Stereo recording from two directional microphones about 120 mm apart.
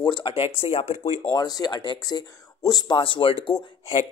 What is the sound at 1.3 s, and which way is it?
Speech, 35° left (ahead or behind).